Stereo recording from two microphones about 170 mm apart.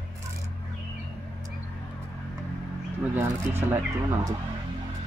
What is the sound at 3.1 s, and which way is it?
Speech, 15° right (ahead or behind).